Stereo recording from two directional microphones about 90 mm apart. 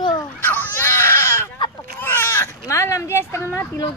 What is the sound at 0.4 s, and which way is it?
Baby cry, 20° left (ahead or behind).